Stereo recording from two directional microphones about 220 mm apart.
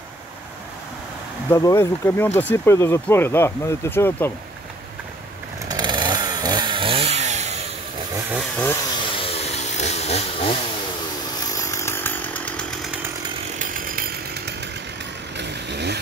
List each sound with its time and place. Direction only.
1.5 s speech: 15° left (ahead or behind)
5.7 s chainsaw: 20° right (ahead or behind)
8.3 s chainsaw: centre (ahead or behind)
9.0 s chainsaw: 25° left (ahead or behind)
11.5 s chainsaw: 15° left (ahead or behind)
13.6 s chainsaw: 40° right (ahead or behind)
15.3 s vehicle: 50° right (ahead or behind)